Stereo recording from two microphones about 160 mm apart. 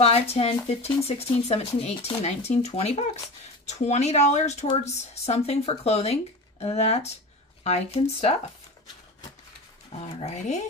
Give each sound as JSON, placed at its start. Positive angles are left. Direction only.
{"t": 0.0, "sound": "speech", "side_deg": 40}
{"t": 10.0, "sound": "speech", "side_deg": 45}